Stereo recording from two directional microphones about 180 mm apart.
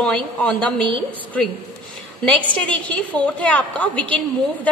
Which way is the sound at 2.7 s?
5° left (ahead or behind).